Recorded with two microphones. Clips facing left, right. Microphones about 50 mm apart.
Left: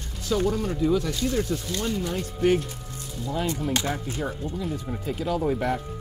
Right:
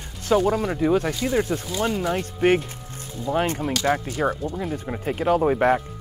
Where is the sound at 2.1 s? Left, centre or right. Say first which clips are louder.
Right 1 dB; right.